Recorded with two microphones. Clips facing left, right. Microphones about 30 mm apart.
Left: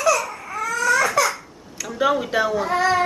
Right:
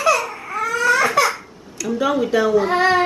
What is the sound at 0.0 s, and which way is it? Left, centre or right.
Baby cry, right.